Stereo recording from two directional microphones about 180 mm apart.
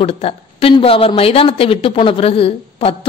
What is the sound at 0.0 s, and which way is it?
A woman's voice, 30° left (ahead or behind).